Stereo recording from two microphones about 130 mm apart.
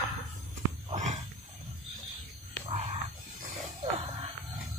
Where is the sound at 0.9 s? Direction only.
65° right (ahead or behind).